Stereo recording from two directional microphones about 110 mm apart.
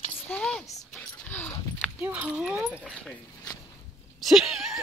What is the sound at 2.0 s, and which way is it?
Speech, 15° right (ahead or behind).